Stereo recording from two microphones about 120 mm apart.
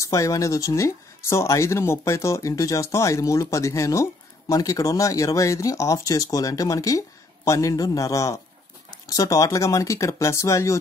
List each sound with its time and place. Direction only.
0.0 s speech: 25° left (ahead or behind)